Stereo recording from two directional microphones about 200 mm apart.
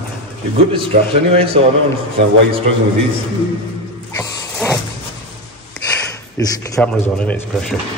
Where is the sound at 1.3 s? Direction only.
25° right (ahead or behind).